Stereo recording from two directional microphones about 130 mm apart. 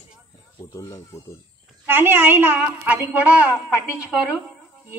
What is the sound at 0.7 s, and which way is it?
Speech, 25° left (ahead or behind).